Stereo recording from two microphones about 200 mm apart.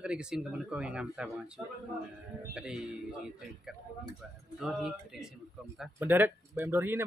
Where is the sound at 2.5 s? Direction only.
5° right (ahead or behind).